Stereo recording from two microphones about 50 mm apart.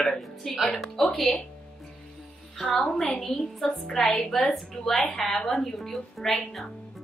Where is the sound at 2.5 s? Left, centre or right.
Centre.